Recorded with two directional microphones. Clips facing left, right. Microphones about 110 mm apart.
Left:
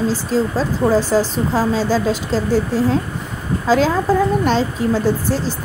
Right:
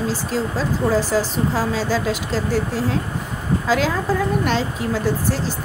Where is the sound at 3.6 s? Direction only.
30° left (ahead or behind).